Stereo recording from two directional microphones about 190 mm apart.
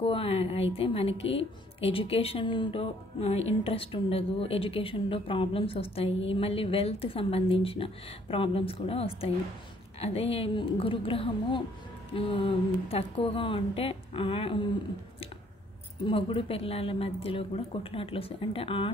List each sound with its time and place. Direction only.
0.0 s a woman's voice: 30° left (ahead or behind)
16.1 s a woman's voice: 30° left (ahead or behind)